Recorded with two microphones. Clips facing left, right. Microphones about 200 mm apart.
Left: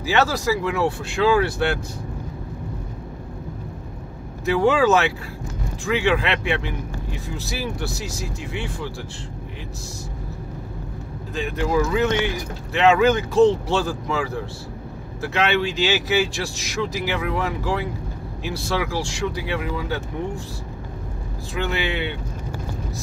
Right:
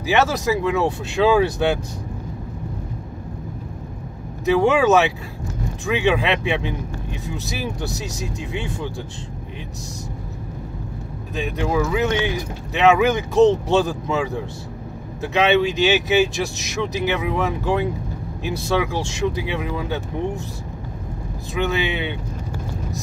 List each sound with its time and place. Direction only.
0.0 s speech: 20° right (ahead or behind)
4.5 s speech: 20° right (ahead or behind)
11.3 s speech: 15° right (ahead or behind)
21.5 s speech: 20° right (ahead or behind)